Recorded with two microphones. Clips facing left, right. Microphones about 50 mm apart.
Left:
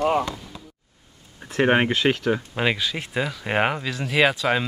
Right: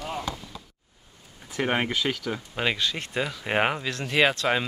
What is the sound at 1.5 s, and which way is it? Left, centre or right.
Speech, left.